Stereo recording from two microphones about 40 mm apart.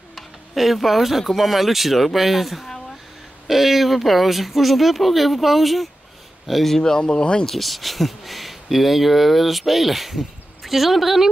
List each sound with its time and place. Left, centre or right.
0.1 s speech: centre; by 7.4 s left
7.4 s speech: centre